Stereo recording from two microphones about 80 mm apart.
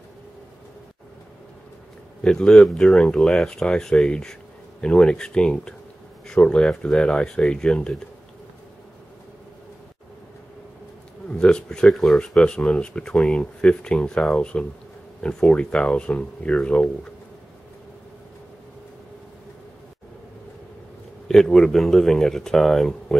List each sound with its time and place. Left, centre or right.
2.2 s speech: centre
11.2 s speech: centre
21.3 s speech: centre